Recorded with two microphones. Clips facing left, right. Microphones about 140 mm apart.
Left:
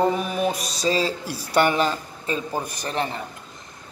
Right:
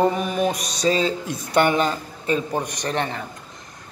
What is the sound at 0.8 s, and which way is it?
Speech, 30° left (ahead or behind).